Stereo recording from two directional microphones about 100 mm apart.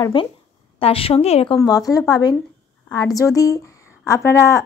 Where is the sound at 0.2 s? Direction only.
60° left (ahead or behind).